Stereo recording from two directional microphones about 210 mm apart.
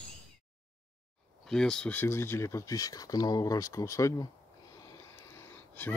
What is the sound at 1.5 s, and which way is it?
Speech, 5° left (ahead or behind).